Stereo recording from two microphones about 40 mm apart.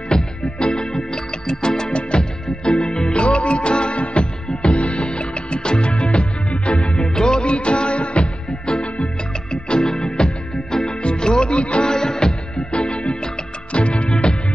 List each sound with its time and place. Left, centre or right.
0.1 s music: left